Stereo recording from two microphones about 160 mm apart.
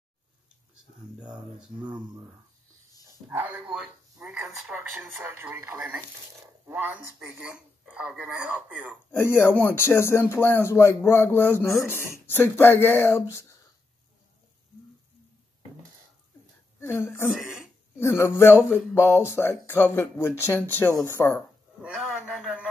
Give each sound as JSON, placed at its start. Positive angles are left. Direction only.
{"t": 1.3, "sound": "speech", "side_deg": -5}
{"t": 3.3, "sound": "speech", "side_deg": -10}
{"t": 9.1, "sound": "speech", "side_deg": 15}
{"t": 16.8, "sound": "speech", "side_deg": 15}
{"t": 21.8, "sound": "a man's voice", "side_deg": -5}